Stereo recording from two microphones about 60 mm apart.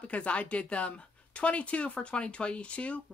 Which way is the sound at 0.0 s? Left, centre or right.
Left.